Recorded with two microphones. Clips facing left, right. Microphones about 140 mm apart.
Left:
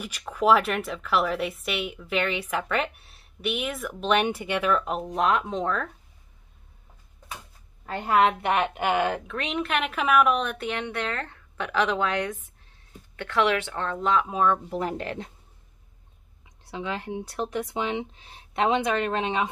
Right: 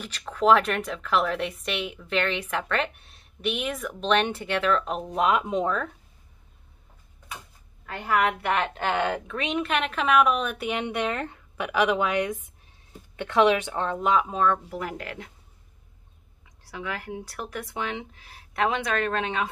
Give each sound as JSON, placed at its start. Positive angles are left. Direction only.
{"t": 0.0, "sound": "a woman's voice", "side_deg": 10}
{"t": 7.8, "sound": "a woman's voice", "side_deg": 30}
{"t": 14.3, "sound": "speech", "side_deg": 10}
{"t": 14.7, "sound": "speech", "side_deg": 30}
{"t": 16.6, "sound": "speech", "side_deg": 25}